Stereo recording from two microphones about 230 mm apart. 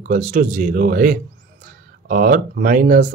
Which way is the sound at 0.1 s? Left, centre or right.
Right.